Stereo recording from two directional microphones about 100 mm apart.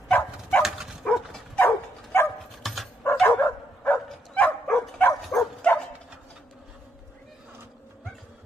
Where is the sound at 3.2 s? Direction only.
20° left (ahead or behind).